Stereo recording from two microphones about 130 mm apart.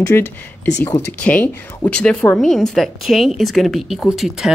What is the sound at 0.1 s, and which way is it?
A woman's voice, 20° left (ahead or behind).